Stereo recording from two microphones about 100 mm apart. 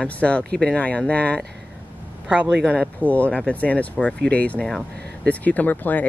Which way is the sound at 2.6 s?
15° left (ahead or behind).